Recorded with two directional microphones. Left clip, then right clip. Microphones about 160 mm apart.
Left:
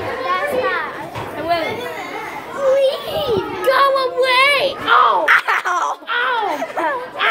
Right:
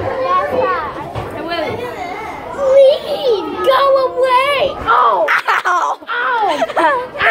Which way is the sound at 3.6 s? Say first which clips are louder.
Right 3 dB; 25° left (ahead or behind).